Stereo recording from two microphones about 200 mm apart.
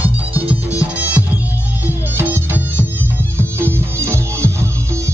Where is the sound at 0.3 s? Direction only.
5° right (ahead or behind).